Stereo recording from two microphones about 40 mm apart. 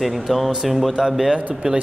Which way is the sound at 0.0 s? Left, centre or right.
Centre.